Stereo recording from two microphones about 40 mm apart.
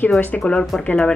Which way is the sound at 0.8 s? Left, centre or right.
Left.